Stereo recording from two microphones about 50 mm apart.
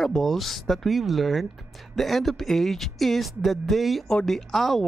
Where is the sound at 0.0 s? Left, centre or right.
Centre.